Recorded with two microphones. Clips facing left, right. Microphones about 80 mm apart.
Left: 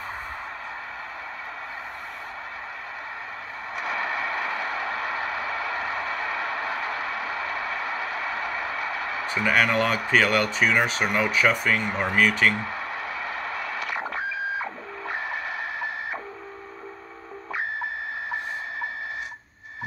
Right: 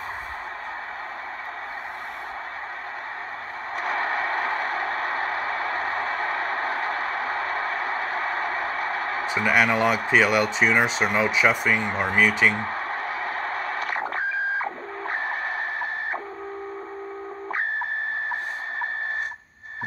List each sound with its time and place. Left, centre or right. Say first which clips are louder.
3.7 s a sound: right 3 dB; right
9.3 s speech: right 1 dB; centre
11.3 s speech: right 1 dB; centre
11.9 s speech: right 1 dB; right
12.2 s speech: right 1 dB; centre
12.5 s a sound: right 3 dB; right